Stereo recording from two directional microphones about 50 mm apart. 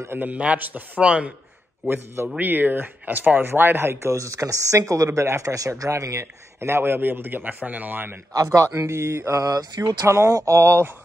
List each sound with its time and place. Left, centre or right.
0.2 s a man's voice: right
1.0 s a man's voice: right
2.3 s speech: right
8.5 s speech: right
10.0 s speech: right